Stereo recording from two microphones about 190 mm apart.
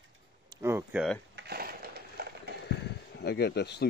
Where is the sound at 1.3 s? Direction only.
60° right (ahead or behind).